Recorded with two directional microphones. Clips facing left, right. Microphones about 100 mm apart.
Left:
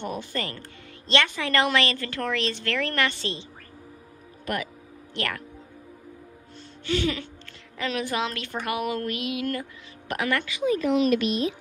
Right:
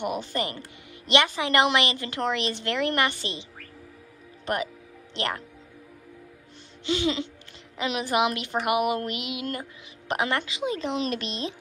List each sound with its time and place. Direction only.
0.0 s a woman's voice: 15° right (ahead or behind)
4.5 s speech: 25° right (ahead or behind)
6.9 s speech: 20° right (ahead or behind)